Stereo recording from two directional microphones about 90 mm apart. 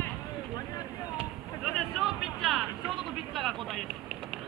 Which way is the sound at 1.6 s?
Centre (ahead or behind).